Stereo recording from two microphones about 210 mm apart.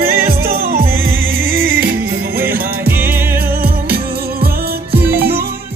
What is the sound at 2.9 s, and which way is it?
Music, 10° right (ahead or behind).